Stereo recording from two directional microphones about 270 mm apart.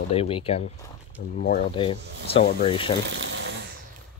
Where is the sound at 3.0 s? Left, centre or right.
Right.